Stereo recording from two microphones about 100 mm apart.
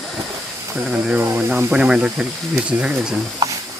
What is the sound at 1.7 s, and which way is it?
Speech, 10° right (ahead or behind).